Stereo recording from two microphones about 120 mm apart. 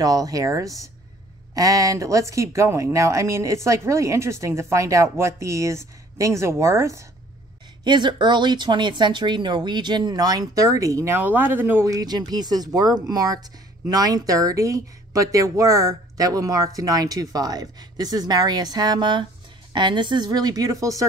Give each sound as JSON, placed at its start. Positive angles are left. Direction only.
{"t": 0.0, "sound": "speech", "side_deg": -30}
{"t": 7.8, "sound": "speech", "side_deg": -40}
{"t": 11.1, "sound": "speech", "side_deg": -15}